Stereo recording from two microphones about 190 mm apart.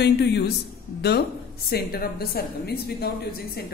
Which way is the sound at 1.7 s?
50° left (ahead or behind).